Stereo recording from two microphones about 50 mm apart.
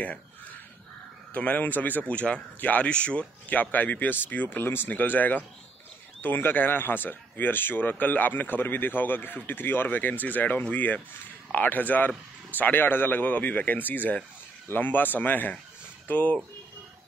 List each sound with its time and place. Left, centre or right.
1.3 s speech: left